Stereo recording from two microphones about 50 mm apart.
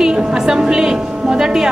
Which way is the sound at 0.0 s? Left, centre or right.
Centre.